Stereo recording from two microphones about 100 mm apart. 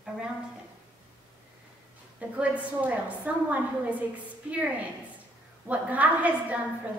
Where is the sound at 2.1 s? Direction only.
15° right (ahead or behind).